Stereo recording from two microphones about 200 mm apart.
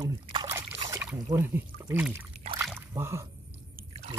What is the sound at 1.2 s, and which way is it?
Speech, 10° right (ahead or behind).